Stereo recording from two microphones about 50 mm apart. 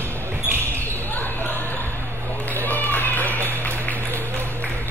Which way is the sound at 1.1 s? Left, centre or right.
Left.